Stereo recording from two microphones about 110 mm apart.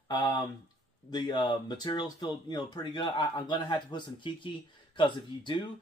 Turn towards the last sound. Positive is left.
turn(degrees=45)  # may be behind; listen again after turning